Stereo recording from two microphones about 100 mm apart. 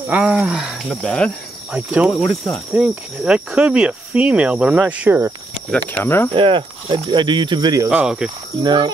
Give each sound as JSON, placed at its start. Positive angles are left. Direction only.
{"t": 0.1, "sound": "cricket", "side_deg": -10}
{"t": 0.8, "sound": "cricket", "side_deg": 10}
{"t": 1.7, "sound": "cricket", "side_deg": -10}
{"t": 5.7, "sound": "cricket", "side_deg": 10}
{"t": 6.0, "sound": "speech", "side_deg": 25}
{"t": 6.3, "sound": "speech", "side_deg": -55}
{"t": 7.9, "sound": "cricket", "side_deg": -10}
{"t": 8.6, "sound": "speech", "side_deg": -50}